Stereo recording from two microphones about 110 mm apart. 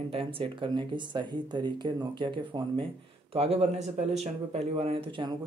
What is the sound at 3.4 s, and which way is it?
Speech, 70° right (ahead or behind).